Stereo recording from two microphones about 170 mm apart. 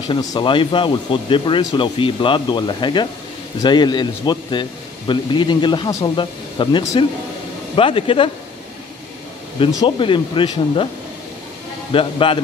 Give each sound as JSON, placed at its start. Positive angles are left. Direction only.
{"t": 0.1, "sound": "speech", "side_deg": 25}
{"t": 9.8, "sound": "speech", "side_deg": 30}
{"t": 11.9, "sound": "speech", "side_deg": 30}